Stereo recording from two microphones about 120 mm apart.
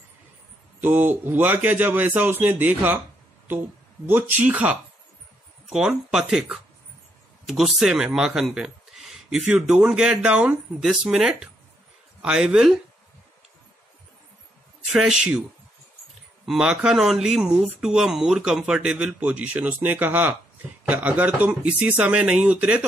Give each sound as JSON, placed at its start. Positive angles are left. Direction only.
{"t": 0.7, "sound": "a man's voice", "side_deg": -15}
{"t": 14.9, "sound": "speech", "side_deg": -5}
{"t": 16.4, "sound": "a man's voice", "side_deg": -5}